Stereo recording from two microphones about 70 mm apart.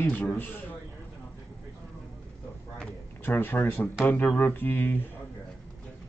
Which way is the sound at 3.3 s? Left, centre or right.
Left.